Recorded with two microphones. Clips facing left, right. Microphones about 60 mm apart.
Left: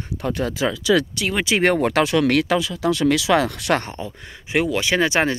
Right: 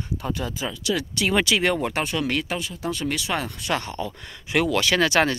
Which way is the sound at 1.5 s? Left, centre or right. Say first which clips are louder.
Left 5 dB; left.